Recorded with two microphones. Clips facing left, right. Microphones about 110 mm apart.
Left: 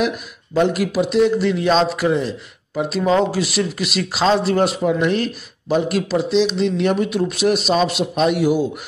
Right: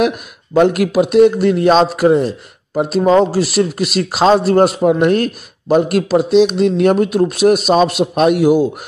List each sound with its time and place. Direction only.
0.0 s a man's voice: 55° right (ahead or behind)